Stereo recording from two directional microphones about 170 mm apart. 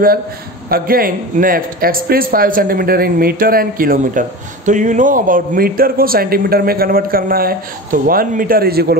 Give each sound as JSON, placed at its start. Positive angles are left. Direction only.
{"t": 0.7, "sound": "a man's voice", "side_deg": -60}